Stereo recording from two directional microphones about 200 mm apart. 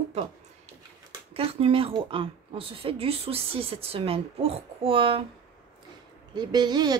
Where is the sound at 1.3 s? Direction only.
30° right (ahead or behind).